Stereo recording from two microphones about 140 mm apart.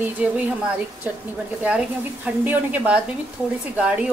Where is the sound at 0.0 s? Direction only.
10° right (ahead or behind).